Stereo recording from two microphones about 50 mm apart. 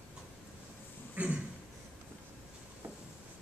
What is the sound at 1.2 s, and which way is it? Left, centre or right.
Speech, right.